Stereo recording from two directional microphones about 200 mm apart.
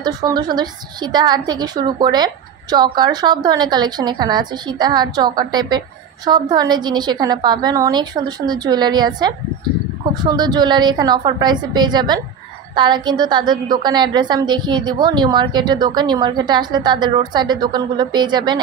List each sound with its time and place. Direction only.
0.0 s a woman's voice: 20° right (ahead or behind)